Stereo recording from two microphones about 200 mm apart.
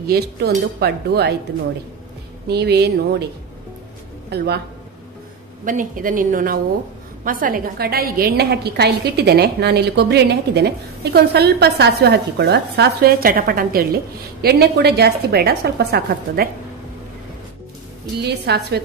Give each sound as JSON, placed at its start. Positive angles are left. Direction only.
{"t": 0.0, "sound": "a woman's voice", "side_deg": -50}
{"t": 2.4, "sound": "a woman's voice", "side_deg": -55}
{"t": 4.3, "sound": "a woman's voice", "side_deg": -55}
{"t": 5.7, "sound": "a woman's voice", "side_deg": -40}
{"t": 18.2, "sound": "a woman's voice", "side_deg": -55}